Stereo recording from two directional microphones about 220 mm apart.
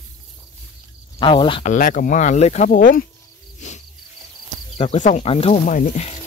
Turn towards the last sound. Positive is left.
turn(degrees=30)  # may be behind; listen again after turning